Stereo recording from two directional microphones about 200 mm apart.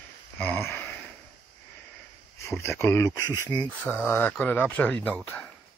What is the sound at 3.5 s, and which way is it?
Speech, 15° left (ahead or behind).